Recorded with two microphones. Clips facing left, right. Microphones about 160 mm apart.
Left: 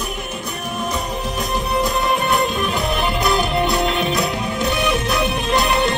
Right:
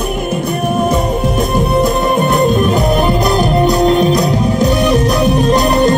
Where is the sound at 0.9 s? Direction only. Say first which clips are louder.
Right 10 dB; 50° right (ahead or behind).